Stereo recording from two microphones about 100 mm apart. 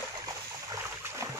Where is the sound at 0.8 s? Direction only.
25° right (ahead or behind).